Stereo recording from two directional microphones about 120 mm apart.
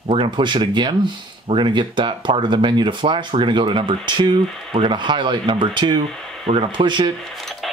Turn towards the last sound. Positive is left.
turn(degrees=0)  # may be behind; listen again after turning